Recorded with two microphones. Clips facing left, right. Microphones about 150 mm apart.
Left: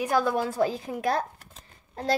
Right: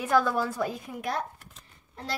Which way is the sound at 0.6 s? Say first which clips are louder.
Left 5 dB; 90° left.